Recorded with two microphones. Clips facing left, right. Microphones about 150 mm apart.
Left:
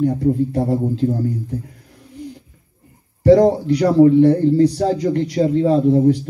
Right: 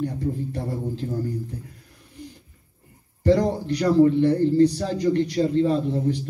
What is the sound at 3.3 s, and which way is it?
A man's voice, 60° left (ahead or behind).